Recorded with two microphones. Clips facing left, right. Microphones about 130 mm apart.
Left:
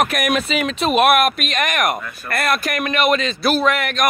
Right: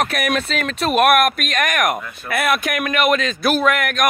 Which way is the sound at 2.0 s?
25° right (ahead or behind).